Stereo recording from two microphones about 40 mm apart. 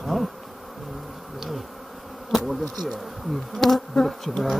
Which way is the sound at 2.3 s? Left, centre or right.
Centre.